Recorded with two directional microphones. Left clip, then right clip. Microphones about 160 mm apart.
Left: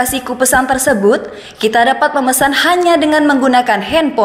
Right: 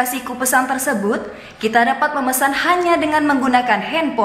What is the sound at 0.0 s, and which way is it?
A woman's voice, 30° left (ahead or behind).